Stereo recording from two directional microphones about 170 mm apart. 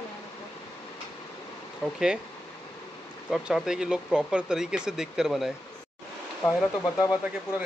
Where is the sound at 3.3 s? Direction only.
5° right (ahead or behind).